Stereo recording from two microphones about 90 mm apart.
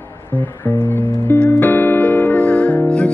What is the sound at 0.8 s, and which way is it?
Music, 20° left (ahead or behind).